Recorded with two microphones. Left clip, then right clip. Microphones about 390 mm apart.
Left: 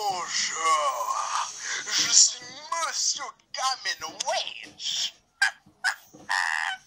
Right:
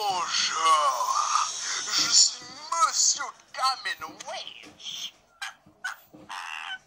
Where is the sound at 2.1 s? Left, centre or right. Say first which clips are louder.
Left 1 dB; left.